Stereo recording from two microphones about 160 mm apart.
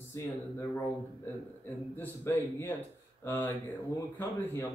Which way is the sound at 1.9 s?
15° left (ahead or behind).